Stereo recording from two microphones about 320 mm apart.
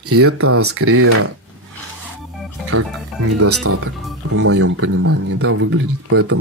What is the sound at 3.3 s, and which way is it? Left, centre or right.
Speech, right.